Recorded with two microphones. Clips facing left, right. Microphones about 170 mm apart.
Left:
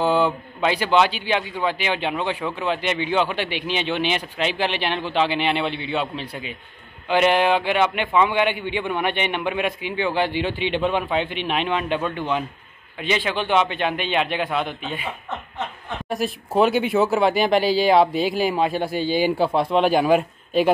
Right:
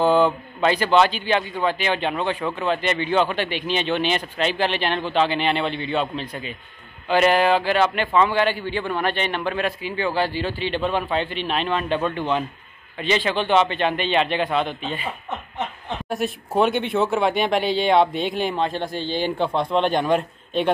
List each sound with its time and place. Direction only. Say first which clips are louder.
0.0 s speech: right 2 dB; 10° left (ahead or behind)
16.1 s speech: left 1 dB; centre (ahead or behind)